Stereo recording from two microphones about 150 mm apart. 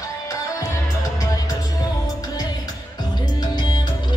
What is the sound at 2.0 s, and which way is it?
Music, 25° left (ahead or behind).